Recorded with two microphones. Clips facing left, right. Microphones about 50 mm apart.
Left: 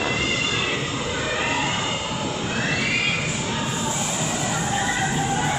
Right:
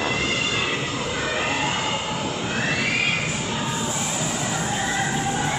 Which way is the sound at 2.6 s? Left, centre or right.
Centre.